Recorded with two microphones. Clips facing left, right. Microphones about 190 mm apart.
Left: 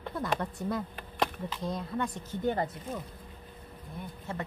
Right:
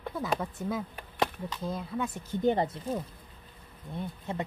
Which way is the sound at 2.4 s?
25° right (ahead or behind).